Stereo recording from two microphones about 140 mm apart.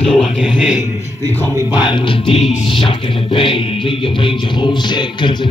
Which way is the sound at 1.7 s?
35° left (ahead or behind).